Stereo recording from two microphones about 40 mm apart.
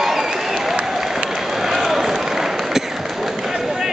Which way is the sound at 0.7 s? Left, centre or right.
Centre.